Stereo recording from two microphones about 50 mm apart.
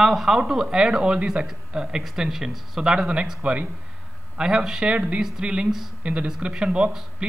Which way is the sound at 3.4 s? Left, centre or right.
Right.